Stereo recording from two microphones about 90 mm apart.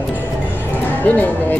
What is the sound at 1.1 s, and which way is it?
Speech, 20° left (ahead or behind).